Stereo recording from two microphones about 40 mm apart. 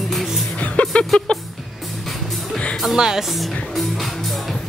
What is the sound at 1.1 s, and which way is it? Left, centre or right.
Speech, centre.